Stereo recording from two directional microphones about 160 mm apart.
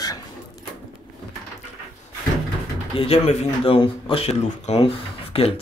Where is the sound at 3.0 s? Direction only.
35° left (ahead or behind).